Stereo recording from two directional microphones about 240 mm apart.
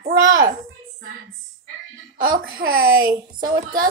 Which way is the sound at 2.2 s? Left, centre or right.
Right.